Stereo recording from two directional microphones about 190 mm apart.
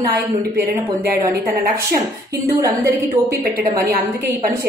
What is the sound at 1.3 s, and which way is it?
Speech, 50° right (ahead or behind).